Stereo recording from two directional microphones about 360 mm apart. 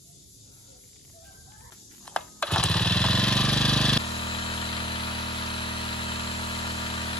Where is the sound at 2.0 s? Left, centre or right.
Centre.